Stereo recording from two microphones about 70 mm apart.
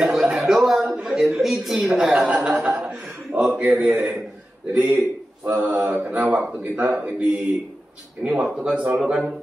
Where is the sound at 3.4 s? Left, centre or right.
Centre.